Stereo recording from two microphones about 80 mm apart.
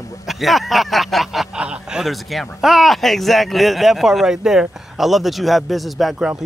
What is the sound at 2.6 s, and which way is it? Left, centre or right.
Speech, centre.